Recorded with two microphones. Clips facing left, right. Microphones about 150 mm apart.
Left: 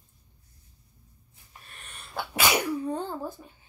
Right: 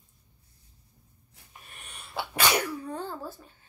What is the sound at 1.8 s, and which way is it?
Sneeze, 10° right (ahead or behind).